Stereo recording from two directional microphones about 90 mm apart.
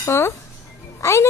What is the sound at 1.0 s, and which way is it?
Speech, 30° left (ahead or behind).